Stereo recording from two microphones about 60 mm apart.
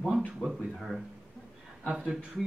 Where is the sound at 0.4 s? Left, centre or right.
Centre.